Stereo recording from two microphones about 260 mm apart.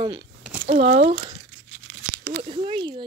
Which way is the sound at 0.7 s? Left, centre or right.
Right.